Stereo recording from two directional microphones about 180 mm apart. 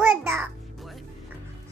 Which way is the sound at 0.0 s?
10° right (ahead or behind).